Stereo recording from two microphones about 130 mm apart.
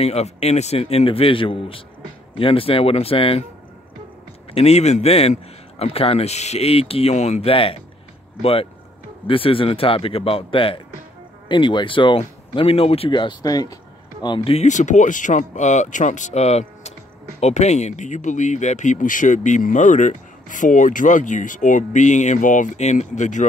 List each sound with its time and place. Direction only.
0.0 s a man's voice: 55° left (ahead or behind)
4.6 s a man's voice: 55° left (ahead or behind); by 13.7 s 30° left (ahead or behind)
14.2 s speech: 40° left (ahead or behind); by 23.4 s 70° left (ahead or behind)